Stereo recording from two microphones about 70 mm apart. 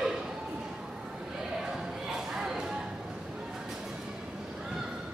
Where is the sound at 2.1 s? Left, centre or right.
Centre.